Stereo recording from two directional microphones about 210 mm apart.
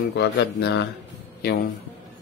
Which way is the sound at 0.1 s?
55° left (ahead or behind).